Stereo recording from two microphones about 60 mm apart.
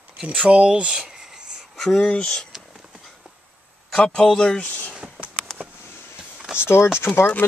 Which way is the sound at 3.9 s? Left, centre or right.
Centre.